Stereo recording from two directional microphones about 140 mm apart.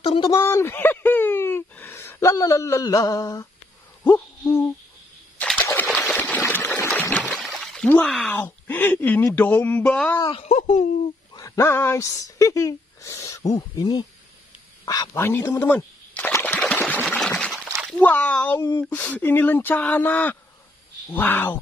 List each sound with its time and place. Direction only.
0.0 s speech: 40° left (ahead or behind)
0.3 s a sound: 20° left (ahead or behind)
7.2 s pour: 5° right (ahead or behind)
8.0 s speech: 5° left (ahead or behind)
10.5 s speech: 55° left (ahead or behind)
11.3 s speech: 20° left (ahead or behind)
15.6 s a sound: 15° left (ahead or behind)
16.5 s water: 10° left (ahead or behind)
17.1 s pour: 10° left (ahead or behind)
17.8 s speech: 10° left (ahead or behind)